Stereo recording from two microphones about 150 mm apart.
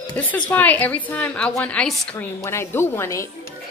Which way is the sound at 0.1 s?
10° left (ahead or behind).